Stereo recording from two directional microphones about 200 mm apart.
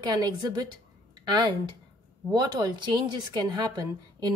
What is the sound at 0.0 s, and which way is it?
A woman's voice, 20° right (ahead or behind).